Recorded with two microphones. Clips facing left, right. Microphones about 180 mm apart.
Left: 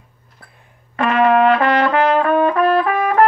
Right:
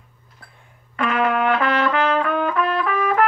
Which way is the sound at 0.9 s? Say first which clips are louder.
Left 6 dB; 35° left (ahead or behind).